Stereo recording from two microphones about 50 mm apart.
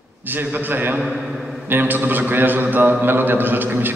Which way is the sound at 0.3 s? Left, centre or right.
Right.